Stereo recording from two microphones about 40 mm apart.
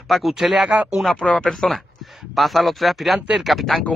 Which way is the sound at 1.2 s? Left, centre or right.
Centre.